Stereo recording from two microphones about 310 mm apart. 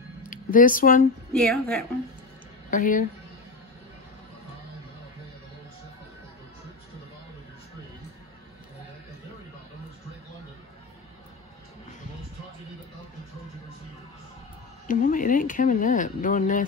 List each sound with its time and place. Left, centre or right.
0.2 s a sound: left
1.3 s a woman's voice: centre
2.7 s speech: left
14.9 s speech: left